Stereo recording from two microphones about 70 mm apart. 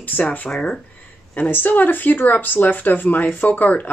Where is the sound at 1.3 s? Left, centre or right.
Left.